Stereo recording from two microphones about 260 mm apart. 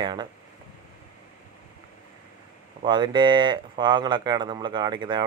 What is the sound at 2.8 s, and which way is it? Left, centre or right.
Speech, centre.